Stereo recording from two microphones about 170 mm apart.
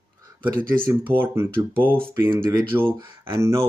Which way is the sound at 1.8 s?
10° left (ahead or behind).